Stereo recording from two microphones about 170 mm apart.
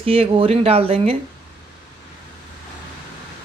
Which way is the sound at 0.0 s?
35° right (ahead or behind).